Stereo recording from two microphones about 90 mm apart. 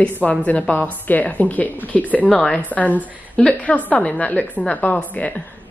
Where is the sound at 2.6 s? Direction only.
20° left (ahead or behind).